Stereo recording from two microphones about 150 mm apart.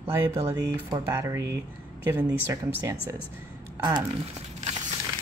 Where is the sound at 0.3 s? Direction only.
20° right (ahead or behind).